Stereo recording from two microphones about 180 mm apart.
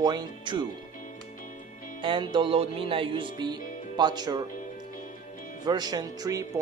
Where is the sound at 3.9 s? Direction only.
25° right (ahead or behind).